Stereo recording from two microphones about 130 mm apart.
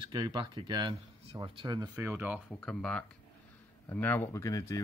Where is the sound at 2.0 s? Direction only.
15° right (ahead or behind).